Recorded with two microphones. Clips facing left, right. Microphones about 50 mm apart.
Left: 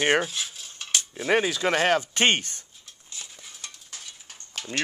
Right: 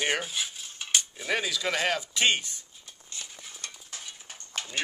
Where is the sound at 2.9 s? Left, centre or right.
Centre.